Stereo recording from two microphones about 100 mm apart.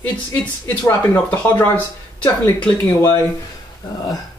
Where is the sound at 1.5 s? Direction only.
15° left (ahead or behind).